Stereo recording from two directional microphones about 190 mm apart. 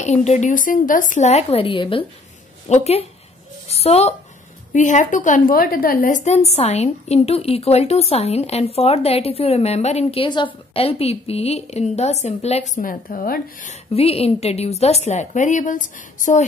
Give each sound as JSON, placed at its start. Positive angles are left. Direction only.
{"t": 0.0, "sound": "a woman's voice", "side_deg": 35}
{"t": 3.6, "sound": "a sound", "side_deg": 35}
{"t": 4.7, "sound": "a woman's voice", "side_deg": 40}